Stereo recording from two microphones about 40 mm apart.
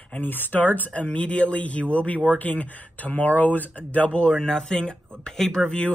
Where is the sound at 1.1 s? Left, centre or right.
Left.